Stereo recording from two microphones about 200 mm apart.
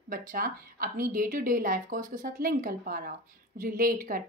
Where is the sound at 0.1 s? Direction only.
45° right (ahead or behind).